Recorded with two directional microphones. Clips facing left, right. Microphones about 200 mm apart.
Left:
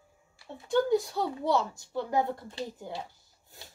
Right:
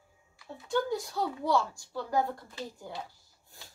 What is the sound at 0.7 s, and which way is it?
A woman's voice, 20° left (ahead or behind).